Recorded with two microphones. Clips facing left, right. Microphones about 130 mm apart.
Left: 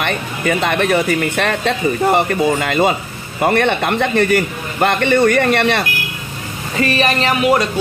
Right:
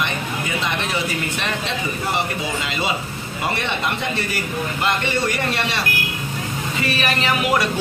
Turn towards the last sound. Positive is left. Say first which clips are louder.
# left 6 dB
turn(degrees=35)  # may be behind; listen again after turning